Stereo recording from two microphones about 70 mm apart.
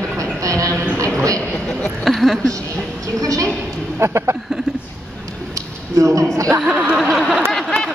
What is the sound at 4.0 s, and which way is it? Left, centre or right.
Speech, right.